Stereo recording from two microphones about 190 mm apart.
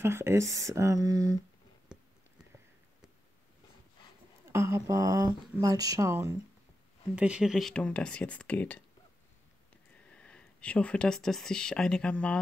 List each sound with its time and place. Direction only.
0.0 s speech: 15° right (ahead or behind)
1.9 s a sound: 5° right (ahead or behind)
4.5 s speech: 15° right (ahead or behind)
7.2 s speech: 5° right (ahead or behind)
10.1 s speech: 5° left (ahead or behind)